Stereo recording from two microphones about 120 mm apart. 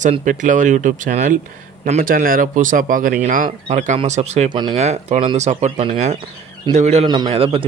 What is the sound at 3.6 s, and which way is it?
Speech, 80° right.